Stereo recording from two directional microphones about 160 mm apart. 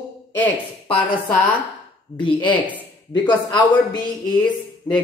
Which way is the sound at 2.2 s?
30° left (ahead or behind).